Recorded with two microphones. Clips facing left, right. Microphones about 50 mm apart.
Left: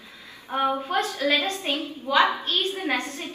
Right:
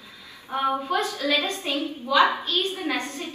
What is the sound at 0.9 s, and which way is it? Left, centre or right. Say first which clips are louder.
A woman's voice: left 1 dB; left.